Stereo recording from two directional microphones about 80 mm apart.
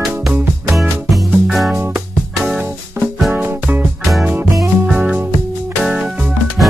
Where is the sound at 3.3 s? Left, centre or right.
Right.